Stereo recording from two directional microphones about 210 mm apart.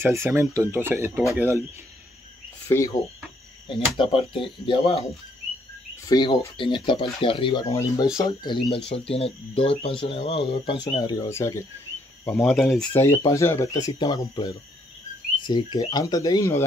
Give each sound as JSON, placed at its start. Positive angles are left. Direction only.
{"t": 0.0, "sound": "speech", "side_deg": -10}
{"t": 2.7, "sound": "speech", "side_deg": 15}
{"t": 6.0, "sound": "speech", "side_deg": 20}
{"t": 12.3, "sound": "speech", "side_deg": 0}